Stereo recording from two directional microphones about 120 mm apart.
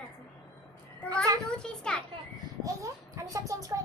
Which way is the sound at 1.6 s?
5° left (ahead or behind).